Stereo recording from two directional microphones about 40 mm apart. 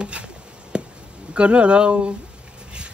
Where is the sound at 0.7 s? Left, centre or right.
Right.